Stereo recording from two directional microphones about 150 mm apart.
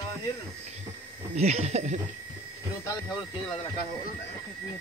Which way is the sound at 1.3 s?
45° right (ahead or behind).